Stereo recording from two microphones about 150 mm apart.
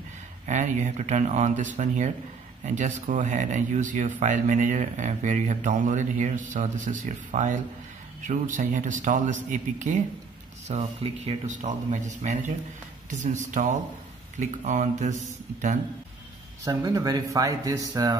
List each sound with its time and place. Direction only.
0.5 s speech: 50° right (ahead or behind)
10.7 s speech: 45° right (ahead or behind)
16.6 s speech: 25° right (ahead or behind)